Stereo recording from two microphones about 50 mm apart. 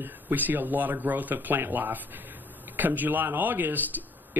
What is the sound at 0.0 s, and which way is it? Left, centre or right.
Speech, right.